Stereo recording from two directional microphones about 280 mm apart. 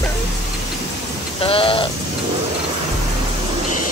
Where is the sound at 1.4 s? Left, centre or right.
Centre.